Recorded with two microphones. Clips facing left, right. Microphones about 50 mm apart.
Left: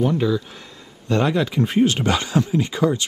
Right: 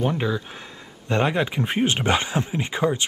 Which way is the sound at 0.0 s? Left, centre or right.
Right.